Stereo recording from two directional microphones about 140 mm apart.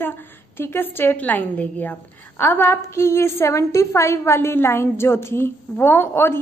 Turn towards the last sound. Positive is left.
turn(degrees=15)  # may be behind; listen again after turning